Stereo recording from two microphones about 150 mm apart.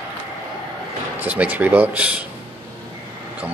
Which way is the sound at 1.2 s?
10° right (ahead or behind).